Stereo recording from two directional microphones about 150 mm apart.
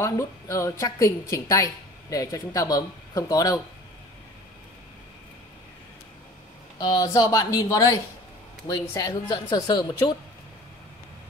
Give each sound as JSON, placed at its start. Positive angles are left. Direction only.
{"t": 0.0, "sound": "a woman's voice", "side_deg": 20}
{"t": 6.8, "sound": "a woman's voice", "side_deg": 25}